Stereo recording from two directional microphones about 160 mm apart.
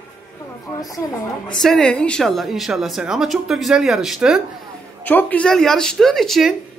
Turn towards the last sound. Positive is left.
turn(degrees=0)  # may be behind; listen again after turning